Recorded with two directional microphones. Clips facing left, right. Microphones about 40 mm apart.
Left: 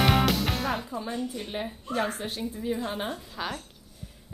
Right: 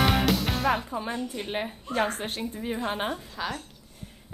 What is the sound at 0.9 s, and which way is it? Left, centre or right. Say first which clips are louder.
Music: right 2 dB; right.